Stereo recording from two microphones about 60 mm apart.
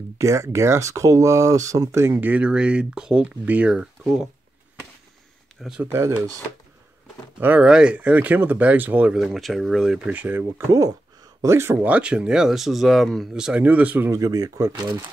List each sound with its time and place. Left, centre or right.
0.2 s speech: right
2.1 s speech: right
2.4 s speech: centre
3.4 s speech: right
5.9 s speech: right
7.3 s speech: right
7.6 s speech: centre
9.1 s speech: centre
10.0 s speech: right
10.7 s speech: right
11.4 s speech: right
11.8 s speech: right; by 13.3 s centre
13.3 s speech: centre
14.1 s speech: right